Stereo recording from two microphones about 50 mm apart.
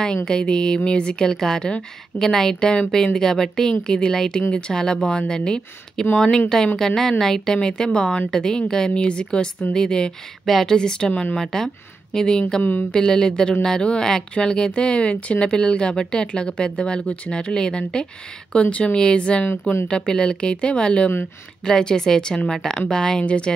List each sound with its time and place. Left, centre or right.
0.0 s speech: centre
10.8 s speech: centre